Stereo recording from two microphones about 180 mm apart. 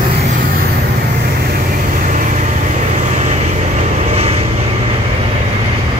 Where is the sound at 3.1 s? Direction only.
40° right (ahead or behind).